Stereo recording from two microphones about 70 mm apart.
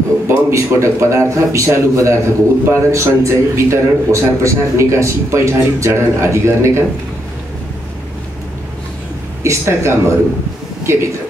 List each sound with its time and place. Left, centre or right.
0.3 s a man's voice: right
9.4 s a man's voice: right